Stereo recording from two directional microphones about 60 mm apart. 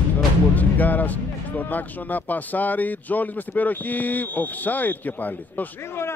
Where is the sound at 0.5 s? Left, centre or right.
Left.